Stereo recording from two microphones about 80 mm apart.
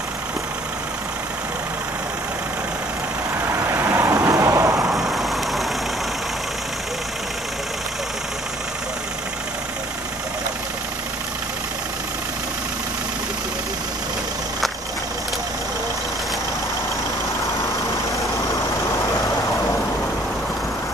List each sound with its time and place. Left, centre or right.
3.4 s vehicle: right
4.9 s vehicle: centre